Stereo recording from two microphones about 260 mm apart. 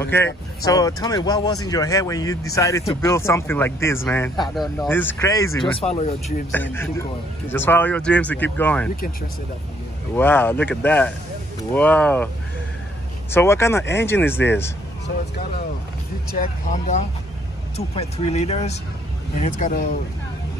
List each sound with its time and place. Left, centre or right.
0.0 s speech: centre
5.8 s speech: left
6.5 s speech: centre
10.1 s speech: centre
13.3 s speech: centre
16.3 s speech: left